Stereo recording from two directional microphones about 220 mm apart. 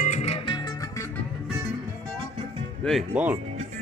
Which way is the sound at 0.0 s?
30° left (ahead or behind).